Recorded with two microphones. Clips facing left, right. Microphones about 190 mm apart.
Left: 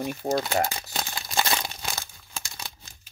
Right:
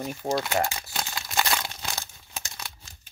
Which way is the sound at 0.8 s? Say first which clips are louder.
Left 1 dB; 20° left (ahead or behind).